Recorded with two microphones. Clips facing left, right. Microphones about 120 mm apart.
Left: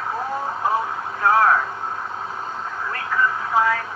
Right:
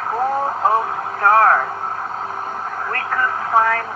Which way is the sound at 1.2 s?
50° right (ahead or behind).